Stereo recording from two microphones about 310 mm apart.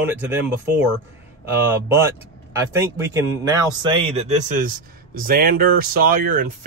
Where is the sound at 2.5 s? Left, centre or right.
Centre.